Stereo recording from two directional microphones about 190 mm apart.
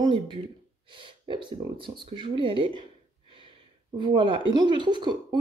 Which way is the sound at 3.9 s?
25° right (ahead or behind).